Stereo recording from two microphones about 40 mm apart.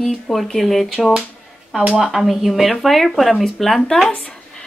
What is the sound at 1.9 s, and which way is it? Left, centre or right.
Speech, centre.